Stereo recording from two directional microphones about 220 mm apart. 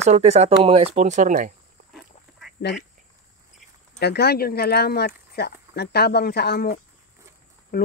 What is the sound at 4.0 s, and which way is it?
Speech, 45° left (ahead or behind).